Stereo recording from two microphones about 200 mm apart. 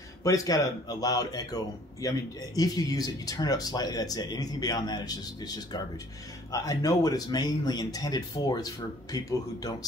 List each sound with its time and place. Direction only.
0.2 s speech: 15° left (ahead or behind)